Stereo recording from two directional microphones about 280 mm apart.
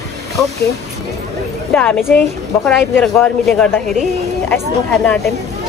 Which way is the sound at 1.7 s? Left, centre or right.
Centre.